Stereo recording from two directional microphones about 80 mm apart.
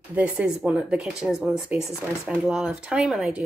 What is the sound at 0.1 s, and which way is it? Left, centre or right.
Speech, centre.